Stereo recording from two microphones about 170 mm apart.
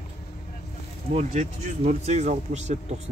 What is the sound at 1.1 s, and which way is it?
Speech, 40° right (ahead or behind).